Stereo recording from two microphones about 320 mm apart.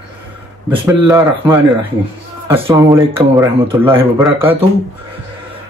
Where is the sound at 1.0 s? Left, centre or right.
Centre.